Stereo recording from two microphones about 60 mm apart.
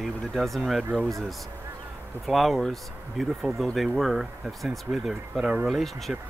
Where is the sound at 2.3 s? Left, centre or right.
Centre.